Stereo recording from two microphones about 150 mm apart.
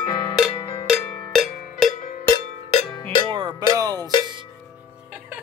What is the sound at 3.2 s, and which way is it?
Music, 35° right (ahead or behind).